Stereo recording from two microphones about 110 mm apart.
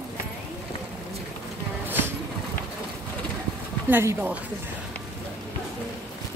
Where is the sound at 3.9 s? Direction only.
20° right (ahead or behind).